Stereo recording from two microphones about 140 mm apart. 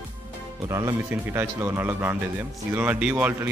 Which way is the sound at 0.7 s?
25° right (ahead or behind).